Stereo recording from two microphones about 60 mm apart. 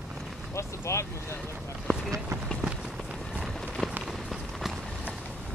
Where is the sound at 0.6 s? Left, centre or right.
Left.